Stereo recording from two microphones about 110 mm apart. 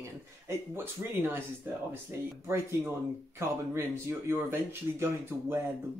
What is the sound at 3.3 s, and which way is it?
Speech, 25° right (ahead or behind).